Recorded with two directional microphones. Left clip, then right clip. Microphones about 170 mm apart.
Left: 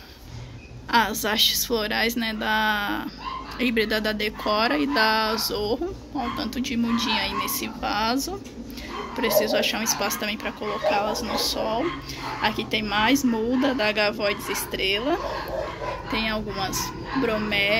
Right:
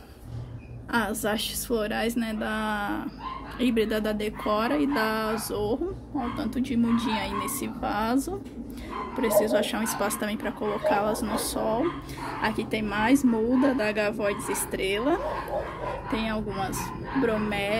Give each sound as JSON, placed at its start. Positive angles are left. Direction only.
{"t": 0.9, "sound": "a woman's voice", "side_deg": -5}
{"t": 9.4, "sound": "speech", "side_deg": -15}
{"t": 12.4, "sound": "speech", "side_deg": -15}